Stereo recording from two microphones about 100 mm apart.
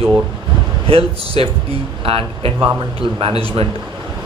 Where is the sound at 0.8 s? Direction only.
70° right (ahead or behind).